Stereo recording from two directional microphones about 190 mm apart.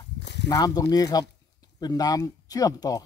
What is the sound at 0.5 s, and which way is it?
A man's voice, 20° left (ahead or behind).